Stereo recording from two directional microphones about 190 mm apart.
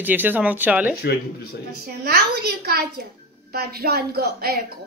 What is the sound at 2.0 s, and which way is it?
A woman's voice, 55° right (ahead or behind).